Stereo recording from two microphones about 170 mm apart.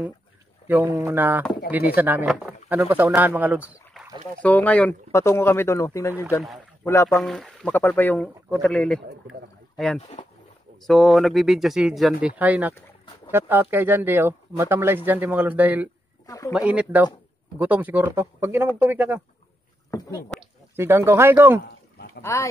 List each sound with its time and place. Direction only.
0.7 s speech: 10° right (ahead or behind)
4.4 s speech: 10° left (ahead or behind)
7.1 s speech: centre (ahead or behind)
9.9 s speech: 35° left (ahead or behind)
10.8 s speech: centre (ahead or behind)
16.3 s a man's voice: 20° left (ahead or behind)
16.5 s speech: 10° right (ahead or behind)
20.7 s speech: 15° right (ahead or behind)
21.9 s a sound: 65° left (ahead or behind)
22.2 s speech: 15° left (ahead or behind)